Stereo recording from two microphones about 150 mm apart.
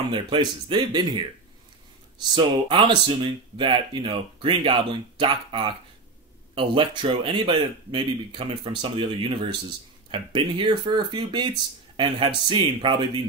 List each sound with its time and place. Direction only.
0.1 s speech: 30° right (ahead or behind)
2.3 s speech: 30° right (ahead or behind)